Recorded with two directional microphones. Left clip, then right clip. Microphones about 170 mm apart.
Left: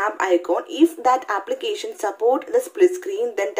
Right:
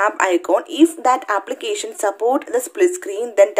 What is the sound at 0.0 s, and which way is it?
Speech, 35° right (ahead or behind).